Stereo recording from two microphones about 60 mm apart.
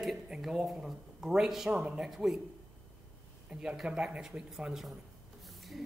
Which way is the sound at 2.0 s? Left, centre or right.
Centre.